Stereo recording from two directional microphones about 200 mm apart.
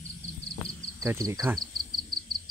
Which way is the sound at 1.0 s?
15° right (ahead or behind).